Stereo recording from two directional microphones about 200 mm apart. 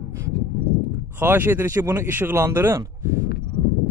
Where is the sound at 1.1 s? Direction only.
10° right (ahead or behind).